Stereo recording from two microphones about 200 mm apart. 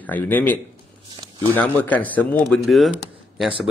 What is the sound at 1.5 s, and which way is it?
Speech, 10° left (ahead or behind).